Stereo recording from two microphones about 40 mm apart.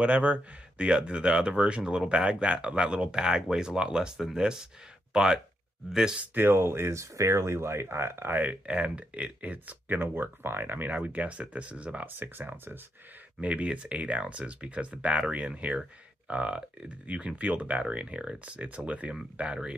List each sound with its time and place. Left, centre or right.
0.0 s speech: right
3.2 s speech: centre
6.3 s speech: right
8.6 s speech: right
10.0 s speech: right
11.0 s speech: right
12.1 s speech: right
13.4 s speech: right
19.3 s speech: right